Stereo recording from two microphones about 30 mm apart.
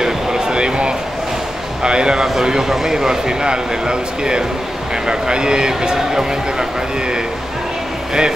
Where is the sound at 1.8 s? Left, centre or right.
Right.